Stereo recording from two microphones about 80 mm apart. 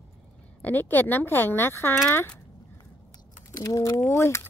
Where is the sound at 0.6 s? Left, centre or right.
Left.